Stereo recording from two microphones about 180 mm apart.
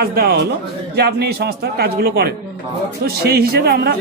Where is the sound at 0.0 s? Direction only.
60° right (ahead or behind).